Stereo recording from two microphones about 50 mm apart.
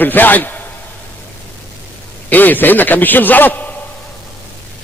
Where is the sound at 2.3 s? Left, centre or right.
Left.